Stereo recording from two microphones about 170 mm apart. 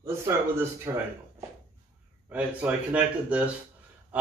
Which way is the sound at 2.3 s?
10° right (ahead or behind).